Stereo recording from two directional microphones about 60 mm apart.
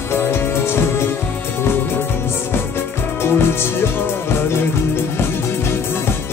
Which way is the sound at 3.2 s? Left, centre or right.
Left.